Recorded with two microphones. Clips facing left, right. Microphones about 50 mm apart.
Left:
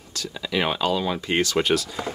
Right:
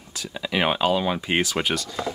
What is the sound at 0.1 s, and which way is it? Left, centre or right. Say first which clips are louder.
Speech: even; centre.